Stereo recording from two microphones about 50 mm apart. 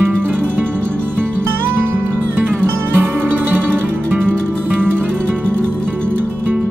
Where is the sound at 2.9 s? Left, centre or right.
Right.